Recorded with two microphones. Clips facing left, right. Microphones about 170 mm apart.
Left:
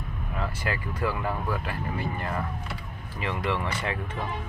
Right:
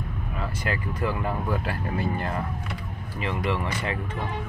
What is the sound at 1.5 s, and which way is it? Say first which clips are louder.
Speech: right 3 dB; 30° right (ahead or behind).